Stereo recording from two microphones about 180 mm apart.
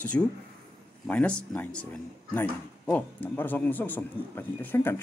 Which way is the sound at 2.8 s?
10° left (ahead or behind).